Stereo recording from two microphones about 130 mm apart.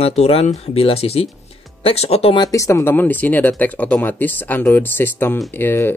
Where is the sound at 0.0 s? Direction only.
50° left (ahead or behind).